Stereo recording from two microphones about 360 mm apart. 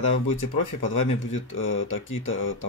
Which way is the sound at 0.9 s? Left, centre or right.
Left.